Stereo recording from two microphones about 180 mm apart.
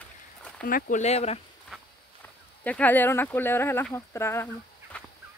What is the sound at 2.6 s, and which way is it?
Speech, 10° left (ahead or behind).